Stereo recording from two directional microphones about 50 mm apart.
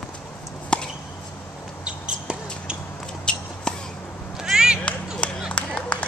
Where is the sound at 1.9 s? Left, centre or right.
Centre.